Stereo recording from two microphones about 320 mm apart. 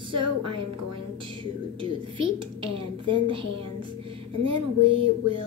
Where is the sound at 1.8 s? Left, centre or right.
Centre.